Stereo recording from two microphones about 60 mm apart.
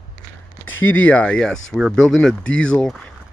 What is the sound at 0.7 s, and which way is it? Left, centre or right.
Speech, left.